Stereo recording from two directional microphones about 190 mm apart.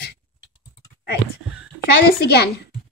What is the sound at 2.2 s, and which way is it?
Speech, 60° left (ahead or behind).